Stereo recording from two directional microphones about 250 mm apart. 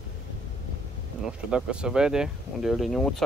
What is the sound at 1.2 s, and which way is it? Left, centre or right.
Speech, centre.